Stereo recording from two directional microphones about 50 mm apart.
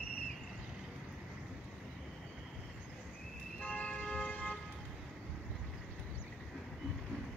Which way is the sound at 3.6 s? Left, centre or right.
Left.